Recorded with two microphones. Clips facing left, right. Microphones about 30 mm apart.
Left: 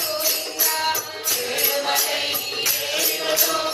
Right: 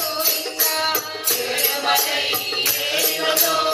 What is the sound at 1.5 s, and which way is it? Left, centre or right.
Music, right.